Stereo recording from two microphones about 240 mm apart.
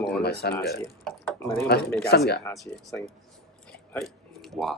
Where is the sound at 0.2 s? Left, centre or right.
Left.